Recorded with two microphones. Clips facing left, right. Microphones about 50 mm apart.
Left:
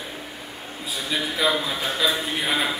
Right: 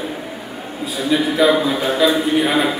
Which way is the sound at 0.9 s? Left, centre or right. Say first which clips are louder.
Right 10 dB; centre.